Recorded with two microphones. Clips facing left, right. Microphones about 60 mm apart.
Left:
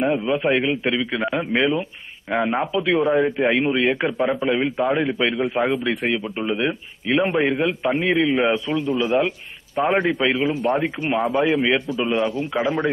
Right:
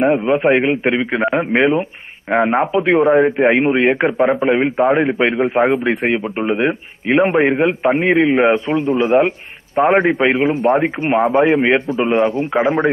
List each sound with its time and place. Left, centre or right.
0.0 s speech: right